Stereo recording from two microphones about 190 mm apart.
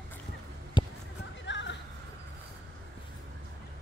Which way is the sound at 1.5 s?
70° left (ahead or behind).